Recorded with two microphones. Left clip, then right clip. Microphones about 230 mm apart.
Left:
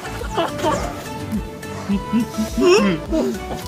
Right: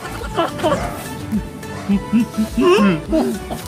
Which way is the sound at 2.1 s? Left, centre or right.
Centre.